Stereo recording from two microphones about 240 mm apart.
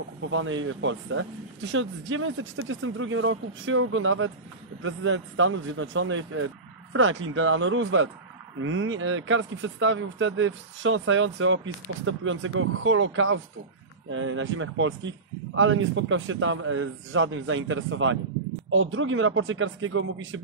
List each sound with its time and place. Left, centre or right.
0.3 s speech: right